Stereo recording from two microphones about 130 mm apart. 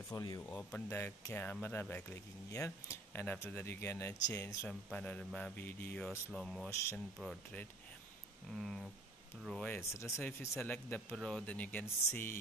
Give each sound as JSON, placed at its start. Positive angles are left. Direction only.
{"t": 0.1, "sound": "speech", "side_deg": 30}
{"t": 0.9, "sound": "speech", "side_deg": 15}
{"t": 4.9, "sound": "speech", "side_deg": 10}
{"t": 6.0, "sound": "speech", "side_deg": 5}
{"t": 6.7, "sound": "speech", "side_deg": 20}
{"t": 8.5, "sound": "speech", "side_deg": 0}
{"t": 9.8, "sound": "speech", "side_deg": 20}